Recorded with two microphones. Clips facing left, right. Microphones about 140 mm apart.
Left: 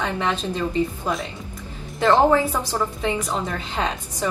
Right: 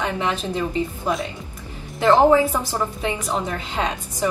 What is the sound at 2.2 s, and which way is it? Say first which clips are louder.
A woman's voice: right 2 dB; 10° right (ahead or behind).